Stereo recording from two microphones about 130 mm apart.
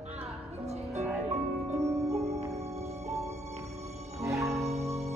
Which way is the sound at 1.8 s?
25° right (ahead or behind).